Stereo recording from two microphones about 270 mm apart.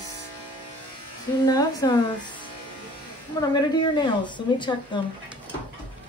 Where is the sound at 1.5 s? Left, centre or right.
Centre.